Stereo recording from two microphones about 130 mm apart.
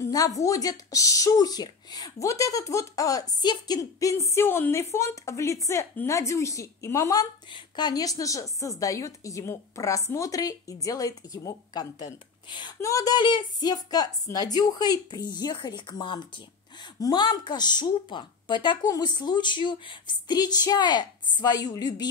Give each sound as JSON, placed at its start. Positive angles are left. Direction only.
{"t": 0.0, "sound": "a woman's voice", "side_deg": 25}